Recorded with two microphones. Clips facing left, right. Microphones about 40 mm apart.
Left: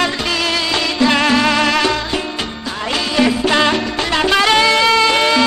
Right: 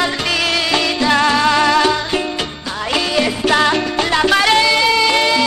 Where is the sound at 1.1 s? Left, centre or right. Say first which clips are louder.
Right 2 dB; left.